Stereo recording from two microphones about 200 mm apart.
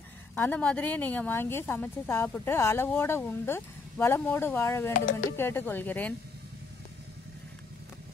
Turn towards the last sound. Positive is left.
turn(degrees=10)  # may be behind; listen again after turning